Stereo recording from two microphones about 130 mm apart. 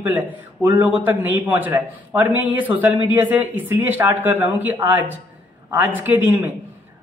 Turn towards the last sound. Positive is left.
turn(degrees=-15)  # may be behind; listen again after turning